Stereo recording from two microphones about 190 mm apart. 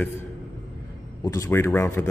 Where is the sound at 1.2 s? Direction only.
15° left (ahead or behind).